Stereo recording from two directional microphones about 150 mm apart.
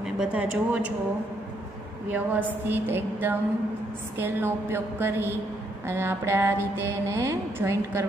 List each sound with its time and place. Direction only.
0.2 s mantra: 10° right (ahead or behind)
2.1 s mantra: 10° right (ahead or behind)